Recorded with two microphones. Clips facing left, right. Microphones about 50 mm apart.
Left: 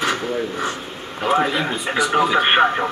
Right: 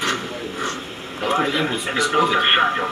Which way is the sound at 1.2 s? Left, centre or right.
Centre.